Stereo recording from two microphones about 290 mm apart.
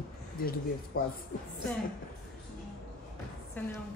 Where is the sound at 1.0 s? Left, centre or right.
Left.